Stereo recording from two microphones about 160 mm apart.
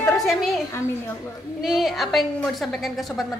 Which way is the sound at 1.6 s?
Centre (ahead or behind).